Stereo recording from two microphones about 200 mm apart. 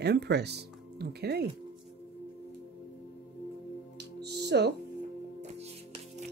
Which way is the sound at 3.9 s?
55° right (ahead or behind).